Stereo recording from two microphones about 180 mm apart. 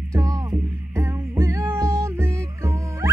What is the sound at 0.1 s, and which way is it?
Music, 20° right (ahead or behind).